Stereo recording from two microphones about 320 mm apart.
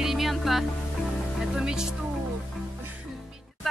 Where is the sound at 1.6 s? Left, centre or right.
Centre.